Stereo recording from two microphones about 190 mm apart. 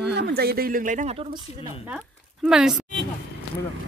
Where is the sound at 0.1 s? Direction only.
60° right (ahead or behind); by 1.7 s 25° right (ahead or behind).